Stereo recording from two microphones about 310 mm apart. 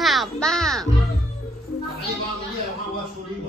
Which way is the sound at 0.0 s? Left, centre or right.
Centre.